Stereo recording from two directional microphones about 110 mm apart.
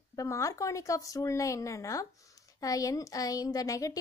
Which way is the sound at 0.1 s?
30° left (ahead or behind).